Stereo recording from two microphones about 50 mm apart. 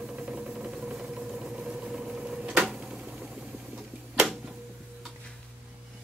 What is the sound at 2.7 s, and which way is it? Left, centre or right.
Tick-tock, centre.